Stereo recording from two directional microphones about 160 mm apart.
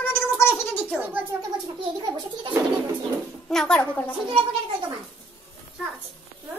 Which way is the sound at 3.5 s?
5° left (ahead or behind).